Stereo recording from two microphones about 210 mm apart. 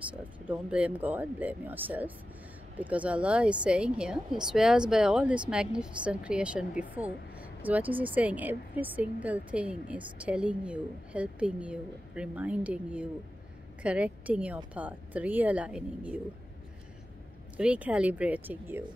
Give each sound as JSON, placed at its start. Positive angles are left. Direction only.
{"t": 0.1, "sound": "a woman's voice", "side_deg": -5}
{"t": 17.6, "sound": "speech", "side_deg": -5}